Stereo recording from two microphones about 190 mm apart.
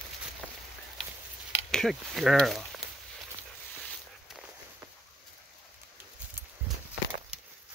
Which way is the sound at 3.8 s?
Centre (ahead or behind).